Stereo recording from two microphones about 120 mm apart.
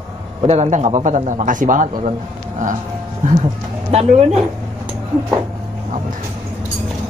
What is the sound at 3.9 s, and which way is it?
Speech, 60° right (ahead or behind).